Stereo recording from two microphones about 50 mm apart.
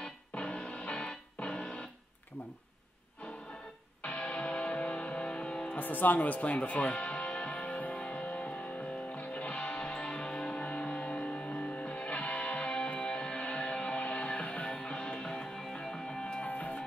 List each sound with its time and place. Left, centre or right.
0.0 s music: left
4.0 s music: left
5.7 s speech: left
6.1 s music: left
16.4 s music: left